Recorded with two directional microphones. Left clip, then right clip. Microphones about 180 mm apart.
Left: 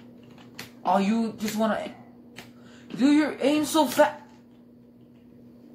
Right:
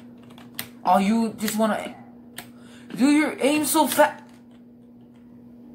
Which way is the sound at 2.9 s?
20° right (ahead or behind).